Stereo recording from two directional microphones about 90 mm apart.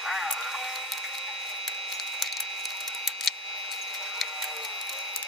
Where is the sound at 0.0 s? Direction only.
5° right (ahead or behind).